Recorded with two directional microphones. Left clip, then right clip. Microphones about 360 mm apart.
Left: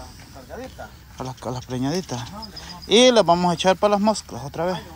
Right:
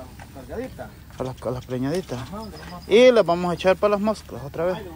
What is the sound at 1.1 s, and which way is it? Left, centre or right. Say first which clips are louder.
Speech: right 2 dB; centre.